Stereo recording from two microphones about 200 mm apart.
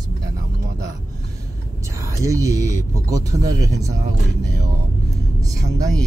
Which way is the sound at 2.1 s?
15° right (ahead or behind).